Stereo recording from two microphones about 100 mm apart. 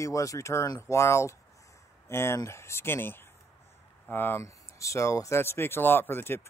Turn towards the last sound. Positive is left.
turn(degrees=25)  # may be behind; listen again after turning